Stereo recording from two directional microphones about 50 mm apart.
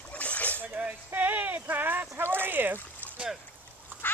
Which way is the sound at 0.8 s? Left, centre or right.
Right.